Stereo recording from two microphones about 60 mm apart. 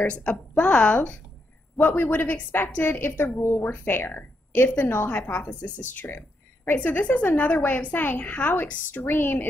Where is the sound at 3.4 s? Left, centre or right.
Left.